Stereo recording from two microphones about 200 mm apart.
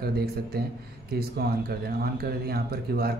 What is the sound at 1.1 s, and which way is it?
Speech, 50° right (ahead or behind).